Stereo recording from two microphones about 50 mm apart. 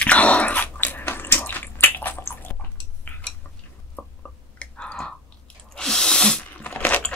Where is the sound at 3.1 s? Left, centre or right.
Left.